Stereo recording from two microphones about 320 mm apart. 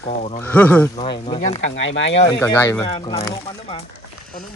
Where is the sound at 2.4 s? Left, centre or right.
Centre.